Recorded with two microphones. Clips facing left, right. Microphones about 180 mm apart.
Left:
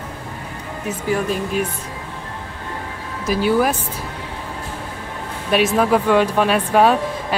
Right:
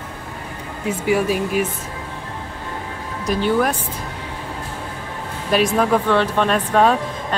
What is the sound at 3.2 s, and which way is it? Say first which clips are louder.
Speech: left 1 dB; 5° left (ahead or behind).